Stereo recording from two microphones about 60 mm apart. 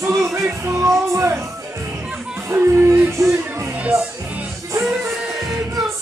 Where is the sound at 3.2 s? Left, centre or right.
Right.